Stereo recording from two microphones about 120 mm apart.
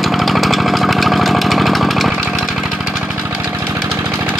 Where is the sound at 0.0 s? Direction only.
Centre (ahead or behind).